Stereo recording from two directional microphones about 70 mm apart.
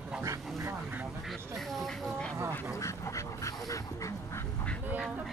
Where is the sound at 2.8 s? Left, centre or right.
Left.